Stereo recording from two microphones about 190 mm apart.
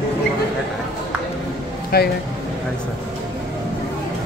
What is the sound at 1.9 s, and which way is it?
Speech, 55° left (ahead or behind).